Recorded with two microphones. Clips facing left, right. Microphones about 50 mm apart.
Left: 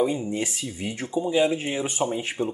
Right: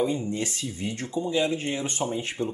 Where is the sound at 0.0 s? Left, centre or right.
Centre.